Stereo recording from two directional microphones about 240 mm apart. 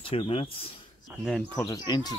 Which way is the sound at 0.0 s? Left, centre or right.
Left.